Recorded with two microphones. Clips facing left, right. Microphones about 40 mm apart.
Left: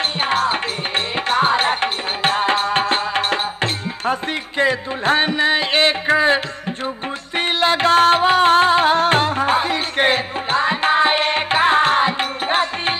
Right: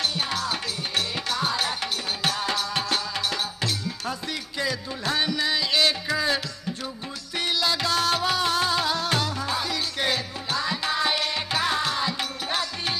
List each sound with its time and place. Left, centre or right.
0.2 s music: left